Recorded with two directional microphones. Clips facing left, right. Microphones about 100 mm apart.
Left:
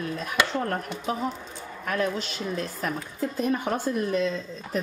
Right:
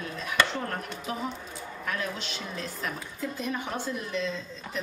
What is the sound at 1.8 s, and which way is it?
A woman's voice, 45° left (ahead or behind).